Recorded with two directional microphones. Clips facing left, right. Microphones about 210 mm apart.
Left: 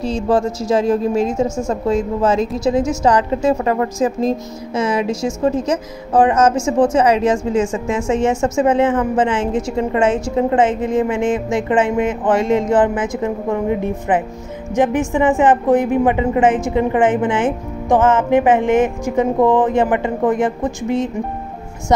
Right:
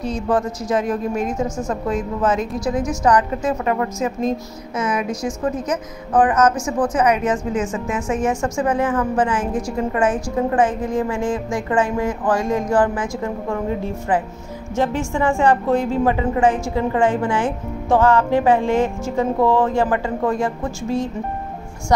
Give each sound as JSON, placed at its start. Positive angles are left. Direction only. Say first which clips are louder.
{"t": 0.0, "sound": "a woman's voice", "louder": "left 4 dB", "side_deg": 30}